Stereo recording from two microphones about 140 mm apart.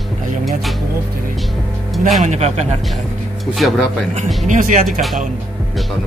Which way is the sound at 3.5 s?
Centre (ahead or behind).